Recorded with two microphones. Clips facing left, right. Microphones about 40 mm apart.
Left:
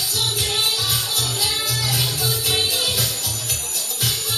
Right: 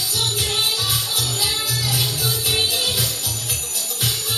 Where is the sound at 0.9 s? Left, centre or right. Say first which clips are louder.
Even; centre.